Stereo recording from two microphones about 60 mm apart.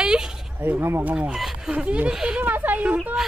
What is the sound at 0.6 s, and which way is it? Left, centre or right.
Speech, right.